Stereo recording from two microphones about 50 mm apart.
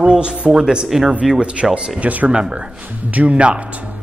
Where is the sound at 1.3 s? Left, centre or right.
Right.